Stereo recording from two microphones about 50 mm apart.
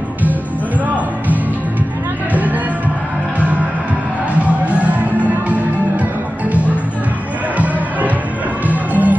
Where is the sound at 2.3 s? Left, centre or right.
Right.